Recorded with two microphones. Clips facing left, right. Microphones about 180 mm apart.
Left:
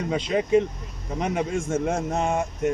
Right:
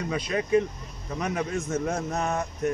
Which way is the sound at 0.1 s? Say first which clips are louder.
Left 3 dB; 25° left (ahead or behind).